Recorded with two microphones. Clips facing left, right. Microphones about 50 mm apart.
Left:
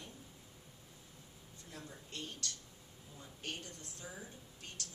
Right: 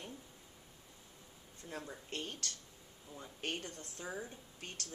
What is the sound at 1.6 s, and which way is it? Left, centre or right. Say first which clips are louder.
A woman's voice: right 6 dB; right.